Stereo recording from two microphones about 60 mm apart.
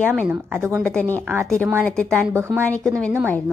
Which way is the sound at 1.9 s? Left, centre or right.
Centre.